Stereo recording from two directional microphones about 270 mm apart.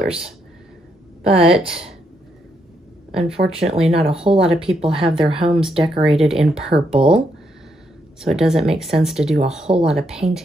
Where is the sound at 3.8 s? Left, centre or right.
Right.